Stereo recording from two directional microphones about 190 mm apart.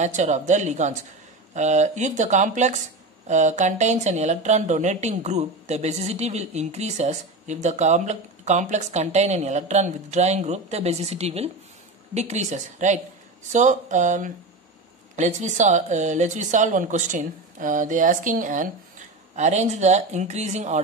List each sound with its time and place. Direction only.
0.0 s a woman's voice: 40° right (ahead or behind)